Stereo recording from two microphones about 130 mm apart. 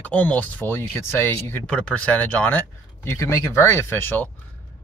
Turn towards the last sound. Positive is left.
turn(degrees=15)  # may be behind; listen again after turning